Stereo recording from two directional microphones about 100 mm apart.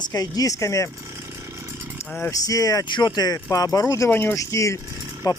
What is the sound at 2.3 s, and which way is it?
Speech, 35° left (ahead or behind).